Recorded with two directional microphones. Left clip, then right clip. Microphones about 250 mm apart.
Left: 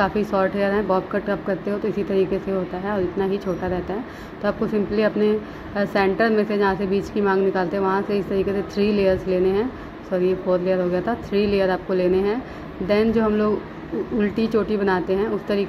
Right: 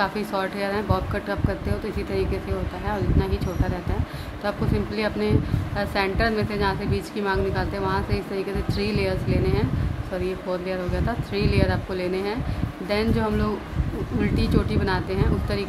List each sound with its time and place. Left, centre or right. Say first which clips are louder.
0.0 s a woman's voice: left 5 dB; centre
4.4 s a woman's voice: left 4 dB; centre